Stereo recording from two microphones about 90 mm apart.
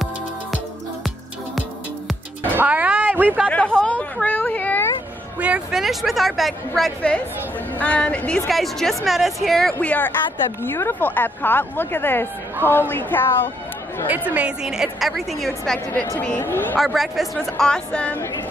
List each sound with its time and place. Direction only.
2.4 s music: 20° right (ahead or behind)
3.4 s a sound: 10° left (ahead or behind)
5.7 s a woman's voice: 5° right (ahead or behind)
7.8 s a woman's voice: 15° left (ahead or behind)
8.5 s a woman's voice: centre (ahead or behind)
9.8 s a woman's voice: 15° left (ahead or behind)
14.0 s a woman's voice: 20° right (ahead or behind); by 15.8 s 5° left (ahead or behind)
16.2 s speech: 20° left (ahead or behind)
16.7 s a woman's voice: centre (ahead or behind)
18.1 s speech: 30° left (ahead or behind)